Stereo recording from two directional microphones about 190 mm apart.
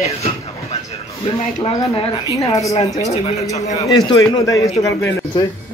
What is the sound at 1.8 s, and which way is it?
Speech, 15° left (ahead or behind).